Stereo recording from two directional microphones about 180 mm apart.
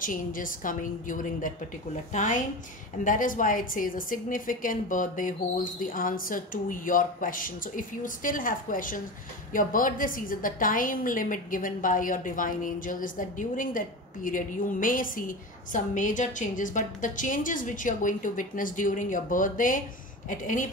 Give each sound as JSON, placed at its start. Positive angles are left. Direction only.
{"t": 0.0, "sound": "a woman's voice", "side_deg": 50}